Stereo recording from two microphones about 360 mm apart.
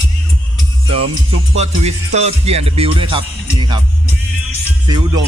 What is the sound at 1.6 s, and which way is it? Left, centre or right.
Music, centre.